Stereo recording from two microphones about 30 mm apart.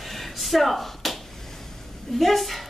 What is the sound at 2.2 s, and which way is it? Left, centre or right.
Speech, centre.